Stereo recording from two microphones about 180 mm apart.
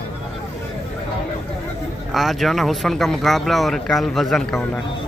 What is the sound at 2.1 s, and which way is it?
Speech, centre (ahead or behind).